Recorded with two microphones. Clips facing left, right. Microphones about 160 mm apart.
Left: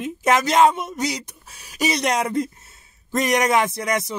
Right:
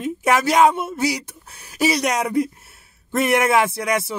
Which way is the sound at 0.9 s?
15° left (ahead or behind).